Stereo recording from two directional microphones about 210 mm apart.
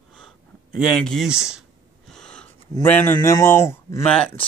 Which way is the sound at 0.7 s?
Centre (ahead or behind).